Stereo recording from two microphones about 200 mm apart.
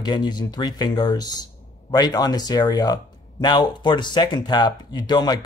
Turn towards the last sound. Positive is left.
turn(degrees=20)  # may be behind; listen again after turning